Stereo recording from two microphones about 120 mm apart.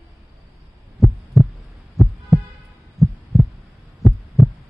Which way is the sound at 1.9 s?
Centre (ahead or behind).